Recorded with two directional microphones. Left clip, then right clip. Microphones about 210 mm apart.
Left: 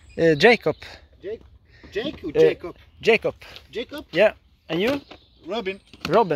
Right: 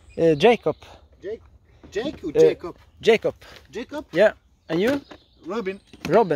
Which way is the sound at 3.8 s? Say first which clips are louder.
Even; 25° right (ahead or behind).